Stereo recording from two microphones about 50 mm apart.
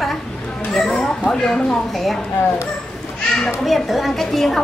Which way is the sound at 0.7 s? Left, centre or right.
Centre.